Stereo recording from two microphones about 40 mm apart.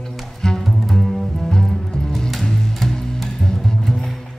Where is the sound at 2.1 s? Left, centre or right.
Centre.